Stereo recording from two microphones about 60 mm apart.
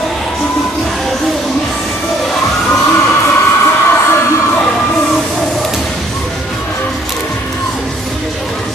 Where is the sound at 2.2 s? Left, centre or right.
Centre.